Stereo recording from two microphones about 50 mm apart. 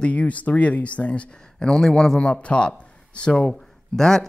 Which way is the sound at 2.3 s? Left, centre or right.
Left.